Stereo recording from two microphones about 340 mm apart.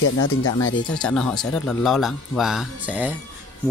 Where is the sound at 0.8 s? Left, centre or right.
Centre.